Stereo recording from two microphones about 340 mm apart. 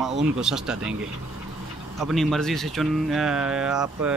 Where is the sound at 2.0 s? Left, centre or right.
Centre.